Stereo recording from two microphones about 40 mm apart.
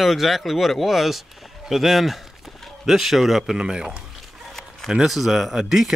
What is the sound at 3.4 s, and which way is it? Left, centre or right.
Speech, centre.